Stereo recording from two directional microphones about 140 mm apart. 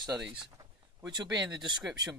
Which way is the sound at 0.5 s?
30° right (ahead or behind).